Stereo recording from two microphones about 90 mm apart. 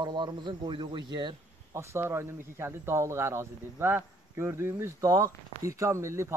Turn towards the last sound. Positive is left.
turn(degrees=-30)  # may be behind; listen again after turning